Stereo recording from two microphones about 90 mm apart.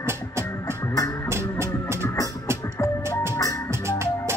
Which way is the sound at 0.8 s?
40° left (ahead or behind).